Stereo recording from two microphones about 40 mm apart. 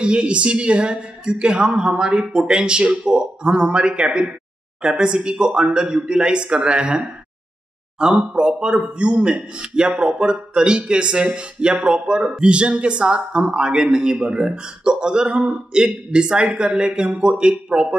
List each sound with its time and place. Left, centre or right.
0.0 s a man's voice: right
8.0 s a man's voice: right